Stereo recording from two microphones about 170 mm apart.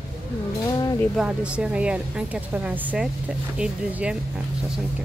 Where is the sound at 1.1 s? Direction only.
5° right (ahead or behind).